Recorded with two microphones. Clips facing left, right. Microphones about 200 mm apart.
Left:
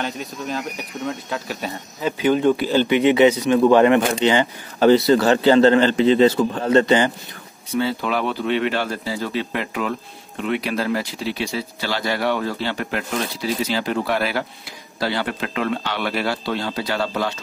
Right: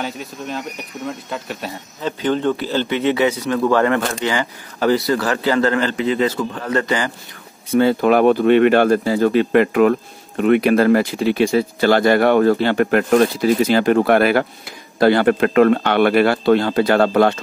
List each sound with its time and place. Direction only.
0.0 s speech: centre (ahead or behind); by 7.1 s 25° left (ahead or behind)
7.7 s speech: 50° right (ahead or behind)